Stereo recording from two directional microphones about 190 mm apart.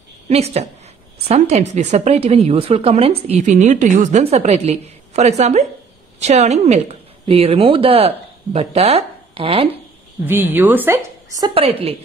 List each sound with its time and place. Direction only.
0.3 s a woman's voice: 35° right (ahead or behind)
10.2 s a woman's voice: 10° right (ahead or behind)
11.4 s a woman's voice: 30° right (ahead or behind)